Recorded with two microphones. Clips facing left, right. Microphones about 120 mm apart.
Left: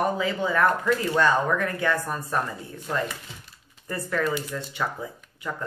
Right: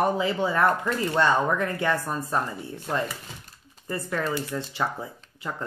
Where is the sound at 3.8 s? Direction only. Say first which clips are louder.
Left 2 dB; 20° right (ahead or behind).